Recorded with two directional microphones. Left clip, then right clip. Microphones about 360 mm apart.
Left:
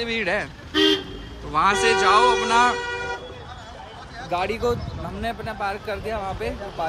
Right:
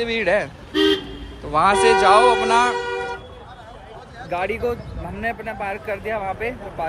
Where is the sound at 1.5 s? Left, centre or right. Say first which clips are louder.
Right 4 dB; centre.